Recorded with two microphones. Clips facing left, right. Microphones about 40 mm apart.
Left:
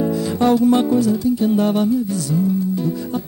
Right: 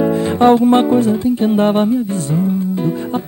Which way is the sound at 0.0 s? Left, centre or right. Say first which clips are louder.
Right 6 dB; right.